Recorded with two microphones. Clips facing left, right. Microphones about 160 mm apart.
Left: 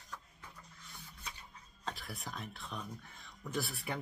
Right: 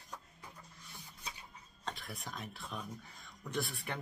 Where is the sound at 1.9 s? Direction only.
Centre (ahead or behind).